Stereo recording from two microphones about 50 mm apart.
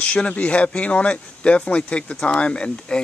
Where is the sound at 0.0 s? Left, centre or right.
Left.